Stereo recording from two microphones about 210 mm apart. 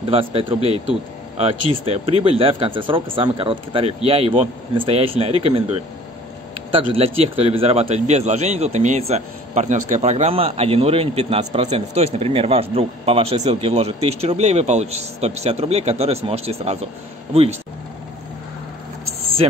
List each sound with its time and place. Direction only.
0.0 s a man's voice: 25° right (ahead or behind)